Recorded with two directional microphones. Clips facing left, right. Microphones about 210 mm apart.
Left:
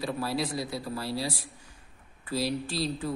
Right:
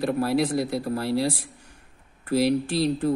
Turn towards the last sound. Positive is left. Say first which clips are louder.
# right 8 dB
turn(degrees=-60)  # may be behind; listen again after turning